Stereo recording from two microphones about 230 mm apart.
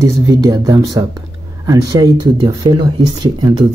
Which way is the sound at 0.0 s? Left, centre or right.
Centre.